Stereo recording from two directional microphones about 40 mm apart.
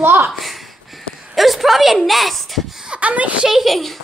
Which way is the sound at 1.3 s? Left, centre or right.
Centre.